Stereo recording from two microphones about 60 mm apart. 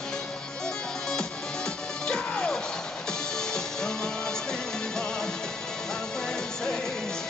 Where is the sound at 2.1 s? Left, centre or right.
Centre.